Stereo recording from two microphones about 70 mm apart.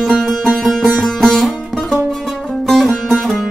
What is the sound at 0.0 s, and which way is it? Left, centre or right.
Music, centre.